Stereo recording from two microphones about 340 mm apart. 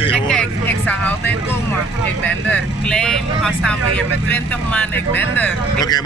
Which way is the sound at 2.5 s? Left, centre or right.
Centre.